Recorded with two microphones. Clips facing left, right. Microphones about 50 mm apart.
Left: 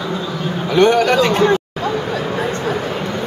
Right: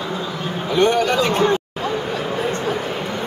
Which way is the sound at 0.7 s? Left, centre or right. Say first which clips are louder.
Left 4 dB; left.